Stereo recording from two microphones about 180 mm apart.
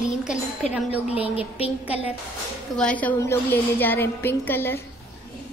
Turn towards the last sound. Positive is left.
turn(degrees=10)  # may be behind; listen again after turning